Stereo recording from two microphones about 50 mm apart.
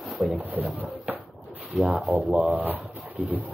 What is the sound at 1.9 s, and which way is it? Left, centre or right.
Speech, right.